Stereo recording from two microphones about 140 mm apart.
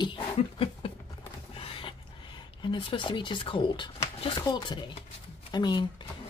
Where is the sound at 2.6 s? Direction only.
35° left (ahead or behind).